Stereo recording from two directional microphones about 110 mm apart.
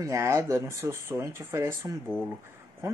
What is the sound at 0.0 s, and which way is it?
Speech, 25° right (ahead or behind).